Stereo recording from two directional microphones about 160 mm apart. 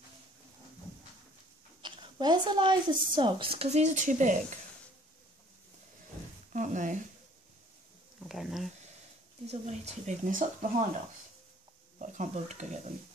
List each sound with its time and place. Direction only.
1.8 s a woman's voice: 30° right (ahead or behind); by 4.4 s 50° right (ahead or behind)
6.5 s speech: 50° right (ahead or behind)
8.2 s speech: centre (ahead or behind)
9.5 s speech: 45° right (ahead or behind)
12.0 s speech: 50° right (ahead or behind)